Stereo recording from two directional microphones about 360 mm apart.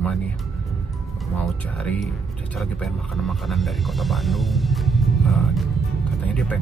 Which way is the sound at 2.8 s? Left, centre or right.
Centre.